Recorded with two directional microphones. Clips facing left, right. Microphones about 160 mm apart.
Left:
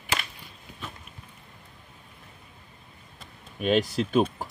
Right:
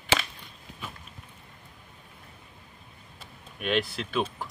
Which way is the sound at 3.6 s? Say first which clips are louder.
Left 5 dB; 40° left (ahead or behind).